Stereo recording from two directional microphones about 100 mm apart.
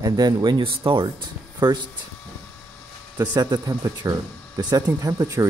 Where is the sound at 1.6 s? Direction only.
45° right (ahead or behind).